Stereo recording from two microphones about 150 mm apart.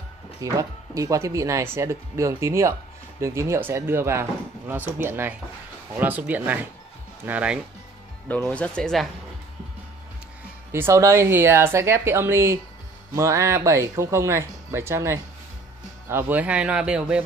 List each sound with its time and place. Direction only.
0.4 s speech: 20° right (ahead or behind)
8.3 s speech: 10° left (ahead or behind)
10.7 s speech: 20° right (ahead or behind)